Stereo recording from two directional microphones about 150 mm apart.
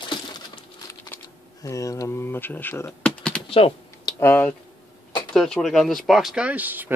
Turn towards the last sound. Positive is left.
turn(degrees=-10)  # may be behind; listen again after turning